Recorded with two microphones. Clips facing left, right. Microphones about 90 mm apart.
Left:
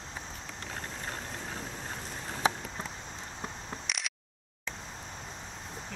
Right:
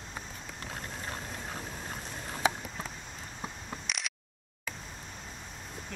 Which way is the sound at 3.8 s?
Centre (ahead or behind).